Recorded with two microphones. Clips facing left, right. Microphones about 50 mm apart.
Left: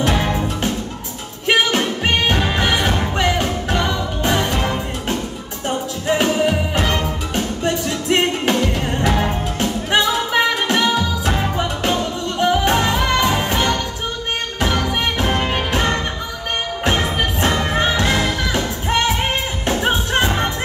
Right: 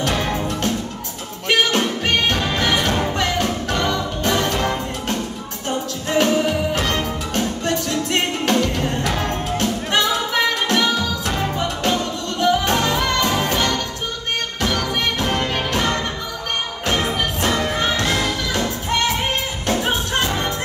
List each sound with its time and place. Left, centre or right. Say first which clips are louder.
0.0 s music: left 2 dB; centre